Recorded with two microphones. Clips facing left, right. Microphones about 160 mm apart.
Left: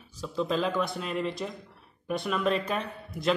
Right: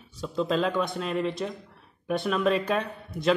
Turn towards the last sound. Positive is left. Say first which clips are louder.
# right 3 dB
turn(degrees=0)  # may be behind; listen again after turning